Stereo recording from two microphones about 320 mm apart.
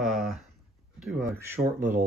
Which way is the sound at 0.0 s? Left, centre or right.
Centre.